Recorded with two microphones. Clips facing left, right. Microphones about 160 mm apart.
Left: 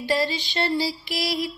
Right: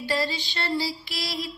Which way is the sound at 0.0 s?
20° left (ahead or behind).